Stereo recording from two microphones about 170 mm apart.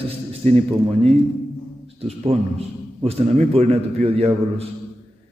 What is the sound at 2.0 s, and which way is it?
A man's voice, 35° right (ahead or behind).